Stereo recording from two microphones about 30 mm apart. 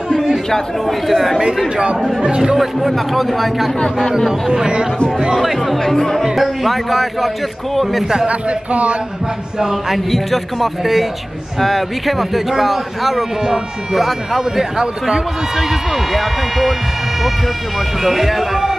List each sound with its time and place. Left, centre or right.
0.8 s speech: centre
2.5 s speech: centre
4.3 s speech: right
5.4 s speech: centre
5.9 s speech: centre
6.4 s speech: centre
8.3 s speech: right
9.6 s speech: centre
10.1 s speech: centre
14.8 s speech: right
16.1 s speech: centre
18.0 s speech: centre